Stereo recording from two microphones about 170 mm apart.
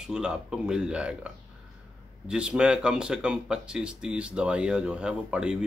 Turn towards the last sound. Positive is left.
turn(degrees=-5)  # may be behind; listen again after turning